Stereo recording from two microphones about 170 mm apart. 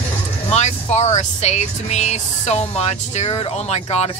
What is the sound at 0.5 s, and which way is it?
Speech, 40° left (ahead or behind).